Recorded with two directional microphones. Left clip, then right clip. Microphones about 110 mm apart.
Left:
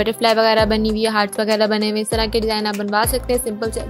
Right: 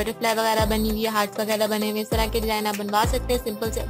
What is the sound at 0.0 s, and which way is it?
Speech, 50° left (ahead or behind).